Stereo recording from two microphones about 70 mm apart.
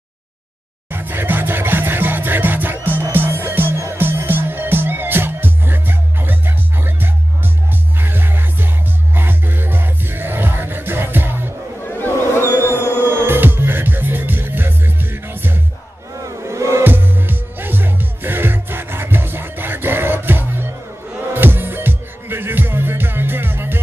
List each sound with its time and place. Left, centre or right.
0.9 s music: right
11.8 s a sound: left
13.0 s music: right
16.2 s battle cry: right
16.8 s music: right